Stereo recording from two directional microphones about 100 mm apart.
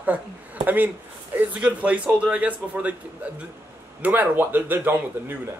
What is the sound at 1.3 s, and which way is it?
A man's voice, 15° right (ahead or behind).